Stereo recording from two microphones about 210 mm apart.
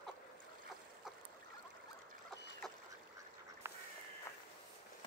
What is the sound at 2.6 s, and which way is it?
Duck, centre (ahead or behind).